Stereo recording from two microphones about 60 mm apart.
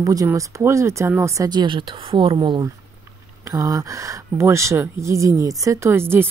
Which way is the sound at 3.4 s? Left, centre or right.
Right.